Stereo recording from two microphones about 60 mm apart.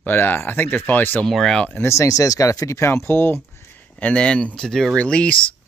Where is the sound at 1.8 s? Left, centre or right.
Left.